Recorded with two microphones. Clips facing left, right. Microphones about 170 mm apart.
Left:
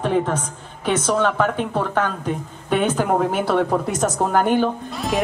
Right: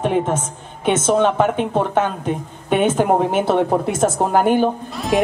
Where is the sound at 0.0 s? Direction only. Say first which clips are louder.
Right 2 dB; 20° right (ahead or behind).